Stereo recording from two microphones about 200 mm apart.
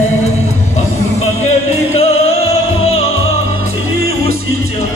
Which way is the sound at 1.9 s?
30° left (ahead or behind).